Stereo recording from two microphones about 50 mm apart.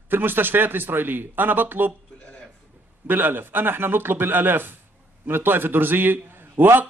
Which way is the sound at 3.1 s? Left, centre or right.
Right.